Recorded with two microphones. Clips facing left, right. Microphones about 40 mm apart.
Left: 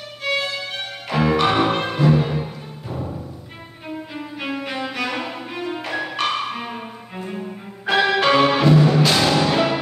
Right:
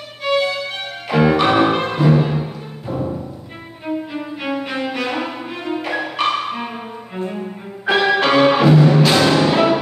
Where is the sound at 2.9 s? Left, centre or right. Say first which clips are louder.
Right 7 dB; right.